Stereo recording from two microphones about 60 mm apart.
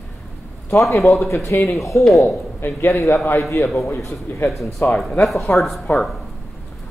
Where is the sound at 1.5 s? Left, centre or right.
Left.